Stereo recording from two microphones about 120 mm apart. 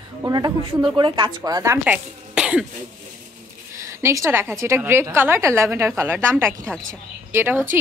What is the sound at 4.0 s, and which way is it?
Speech, 25° right (ahead or behind).